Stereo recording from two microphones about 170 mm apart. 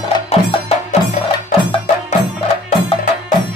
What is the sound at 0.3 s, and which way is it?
Music, 35° left (ahead or behind).